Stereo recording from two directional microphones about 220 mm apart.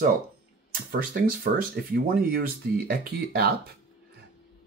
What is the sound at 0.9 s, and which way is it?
Speech, 40° right (ahead or behind).